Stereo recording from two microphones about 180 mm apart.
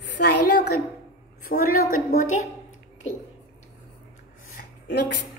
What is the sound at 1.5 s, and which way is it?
Speech, 55° left (ahead or behind).